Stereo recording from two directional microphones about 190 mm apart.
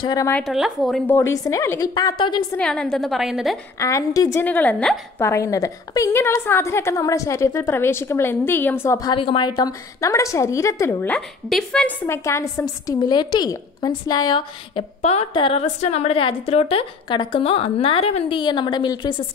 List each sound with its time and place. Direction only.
0.0 s a woman's voice: 20° left (ahead or behind)
0.4 s a woman's voice: centre (ahead or behind)
1.0 s a woman's voice: 15° left (ahead or behind)
2.5 s a woman's voice: 5° left (ahead or behind)
3.8 s a woman's voice: 15° left (ahead or behind)